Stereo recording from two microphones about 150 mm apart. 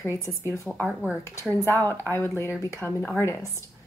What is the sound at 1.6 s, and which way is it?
A woman's voice, 15° left (ahead or behind).